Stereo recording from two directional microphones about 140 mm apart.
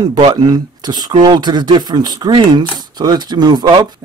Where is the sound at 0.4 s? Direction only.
30° right (ahead or behind).